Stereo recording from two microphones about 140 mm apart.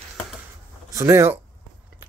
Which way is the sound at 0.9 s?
20° right (ahead or behind).